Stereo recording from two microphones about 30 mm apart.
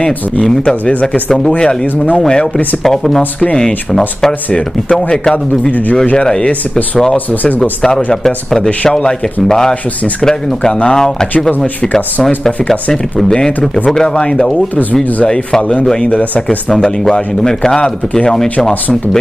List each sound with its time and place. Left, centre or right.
0.4 s speech: centre
2.2 s speech: left
2.9 s speech: centre
4.9 s speech: centre
7.8 s speech: centre
11.8 s speech: left
13.8 s speech: left
16.0 s speech: left
16.4 s speech: centre
16.8 s speech: left
18.3 s speech: centre